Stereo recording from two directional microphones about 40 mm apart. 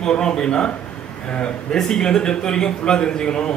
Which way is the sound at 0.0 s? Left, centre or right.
Centre.